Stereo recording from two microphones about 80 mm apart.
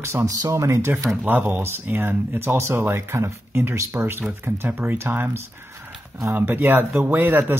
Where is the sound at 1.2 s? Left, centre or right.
Right.